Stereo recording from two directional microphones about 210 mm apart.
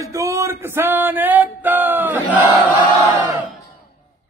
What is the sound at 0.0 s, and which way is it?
Music, 15° right (ahead or behind).